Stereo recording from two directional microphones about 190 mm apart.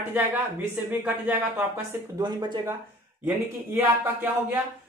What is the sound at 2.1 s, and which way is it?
Speech, 25° right (ahead or behind).